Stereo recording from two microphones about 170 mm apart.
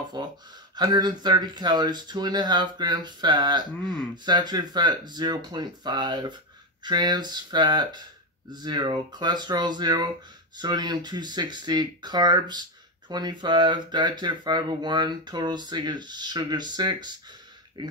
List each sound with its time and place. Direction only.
0.2 s speech: 25° right (ahead or behind)
3.7 s speech: 5° left (ahead or behind)
4.1 s speech: 25° right (ahead or behind)